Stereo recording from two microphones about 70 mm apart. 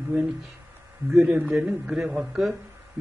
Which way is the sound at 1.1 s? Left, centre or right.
Centre.